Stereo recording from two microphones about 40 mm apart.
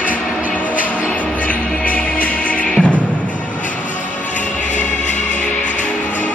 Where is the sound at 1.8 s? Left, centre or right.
Left.